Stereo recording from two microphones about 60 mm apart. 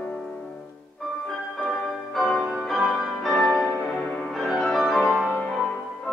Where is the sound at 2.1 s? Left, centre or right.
Centre.